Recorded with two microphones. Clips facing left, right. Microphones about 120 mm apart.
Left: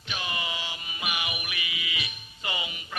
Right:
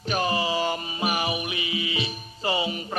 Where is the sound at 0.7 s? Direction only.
40° right (ahead or behind).